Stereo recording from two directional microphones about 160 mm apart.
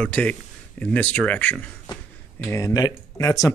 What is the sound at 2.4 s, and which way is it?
Speech, 20° left (ahead or behind).